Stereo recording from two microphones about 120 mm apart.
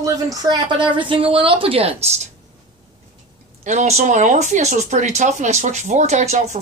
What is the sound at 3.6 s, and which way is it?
Speech, 70° right (ahead or behind).